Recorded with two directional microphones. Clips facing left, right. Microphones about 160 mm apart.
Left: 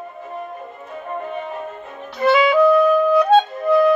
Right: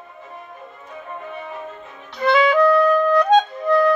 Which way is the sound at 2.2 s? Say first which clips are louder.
Left 2 dB; 5° left (ahead or behind).